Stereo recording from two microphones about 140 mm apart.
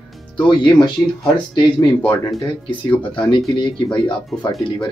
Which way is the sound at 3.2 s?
35° left (ahead or behind).